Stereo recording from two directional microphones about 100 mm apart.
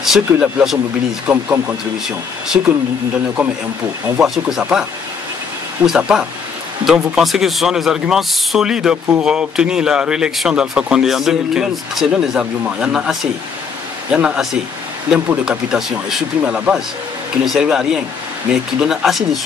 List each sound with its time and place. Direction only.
0.0 s speech: 5° right (ahead or behind)
4.2 s speech: 5° right (ahead or behind)
5.9 s speech: 5° right (ahead or behind)